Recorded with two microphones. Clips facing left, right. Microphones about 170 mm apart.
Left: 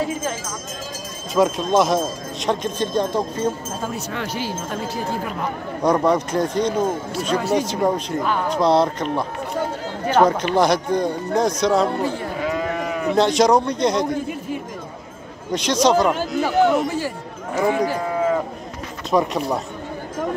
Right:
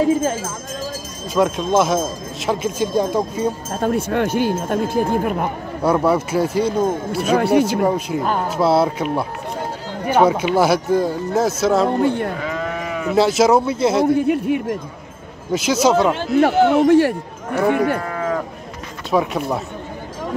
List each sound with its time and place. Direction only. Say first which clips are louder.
1.3 s speech: right 1 dB; centre (ahead or behind)
3.8 s speech: right 11 dB; 55° right (ahead or behind)
5.8 s speech: right 1 dB; 5° right (ahead or behind)
12.0 s speech: right 6 dB; 65° right (ahead or behind)
12.4 s speech: left 1 dB; 5° left (ahead or behind)
14.1 s speech: right 8 dB; 65° right (ahead or behind)
15.5 s speech: right 1 dB; 5° right (ahead or behind)
16.8 s speech: right 12 dB; 65° right (ahead or behind)
17.6 s speech: right 2 dB; centre (ahead or behind)
17.9 s livestock: left 2 dB; 5° left (ahead or behind)
19.0 s speech: right 1 dB; centre (ahead or behind)